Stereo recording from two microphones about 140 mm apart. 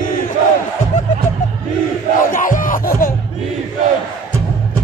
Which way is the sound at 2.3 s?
75° left (ahead or behind).